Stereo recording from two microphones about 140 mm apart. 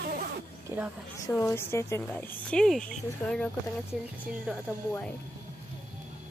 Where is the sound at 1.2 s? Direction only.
20° left (ahead or behind).